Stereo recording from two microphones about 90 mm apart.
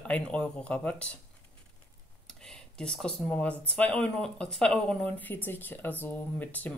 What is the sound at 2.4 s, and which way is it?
Speech, 10° left (ahead or behind).